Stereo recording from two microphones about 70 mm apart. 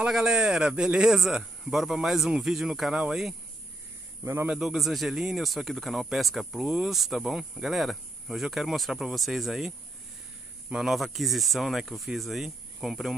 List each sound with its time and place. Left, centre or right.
0.1 s speech: centre
4.2 s a man's voice: right
4.5 s speech: centre